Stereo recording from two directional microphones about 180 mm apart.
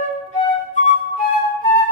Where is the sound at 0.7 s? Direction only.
45° left (ahead or behind).